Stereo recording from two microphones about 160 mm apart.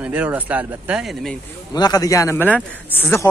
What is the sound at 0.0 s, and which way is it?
Speech, 10° right (ahead or behind).